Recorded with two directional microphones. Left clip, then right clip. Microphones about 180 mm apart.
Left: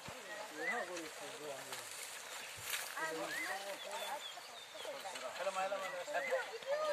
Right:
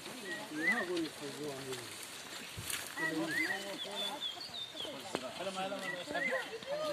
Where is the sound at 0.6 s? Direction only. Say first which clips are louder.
Right 7 dB; 30° left (ahead or behind).